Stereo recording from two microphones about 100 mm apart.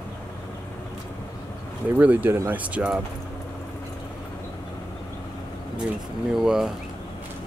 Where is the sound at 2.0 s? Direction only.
15° right (ahead or behind).